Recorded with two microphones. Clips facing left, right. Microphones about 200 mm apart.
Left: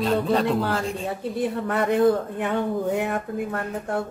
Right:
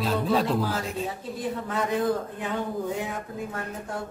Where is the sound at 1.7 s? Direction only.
60° left (ahead or behind).